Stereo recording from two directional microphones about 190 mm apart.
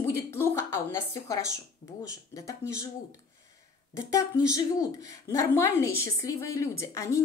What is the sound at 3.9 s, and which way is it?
A woman's voice, 15° left (ahead or behind).